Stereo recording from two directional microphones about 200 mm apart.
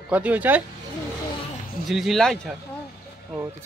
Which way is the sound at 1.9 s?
Centre (ahead or behind).